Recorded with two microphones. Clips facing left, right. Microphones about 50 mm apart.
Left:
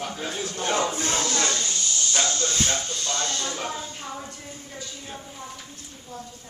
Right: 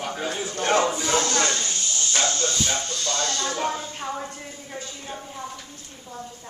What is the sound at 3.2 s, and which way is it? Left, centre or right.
Speech, right.